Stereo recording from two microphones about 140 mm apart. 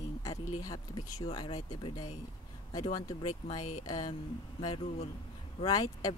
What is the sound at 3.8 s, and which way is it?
Speech, 30° left (ahead or behind).